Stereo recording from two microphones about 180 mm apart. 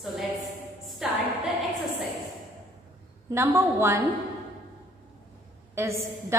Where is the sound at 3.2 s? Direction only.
15° right (ahead or behind).